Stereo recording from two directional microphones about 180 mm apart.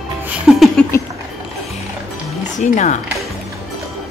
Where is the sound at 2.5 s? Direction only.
40° left (ahead or behind).